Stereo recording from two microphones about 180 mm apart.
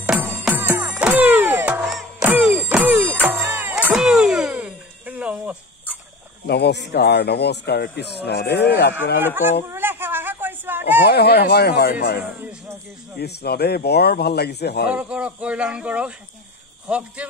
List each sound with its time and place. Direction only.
0.0 s music: 5° right (ahead or behind)
6.4 s a man's voice: 65° left (ahead or behind)
9.2 s speech: 10° right (ahead or behind)
9.7 s a sound: 10° right (ahead or behind)
11.1 s a man's voice: 65° left (ahead or behind)
12.2 s a sound: 10° right (ahead or behind)
13.2 s a man's voice: 65° left (ahead or behind)
14.9 s speech: 5° right (ahead or behind)